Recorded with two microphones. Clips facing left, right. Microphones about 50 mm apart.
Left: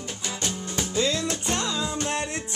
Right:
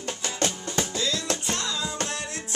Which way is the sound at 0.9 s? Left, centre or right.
Left.